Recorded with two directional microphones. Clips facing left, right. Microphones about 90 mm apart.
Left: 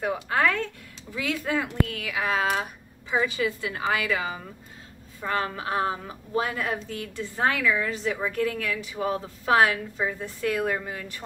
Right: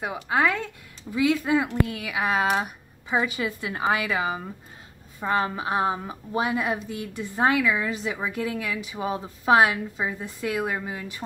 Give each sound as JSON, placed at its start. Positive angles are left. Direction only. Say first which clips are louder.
{"t": 0.0, "sound": "a woman's voice", "louder": "even", "side_deg": -15}